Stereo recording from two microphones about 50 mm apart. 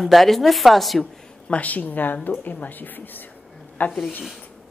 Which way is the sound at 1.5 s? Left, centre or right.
Left.